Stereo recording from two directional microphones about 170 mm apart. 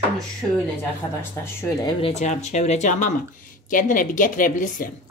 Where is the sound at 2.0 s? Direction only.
40° left (ahead or behind); by 4.8 s 55° left (ahead or behind).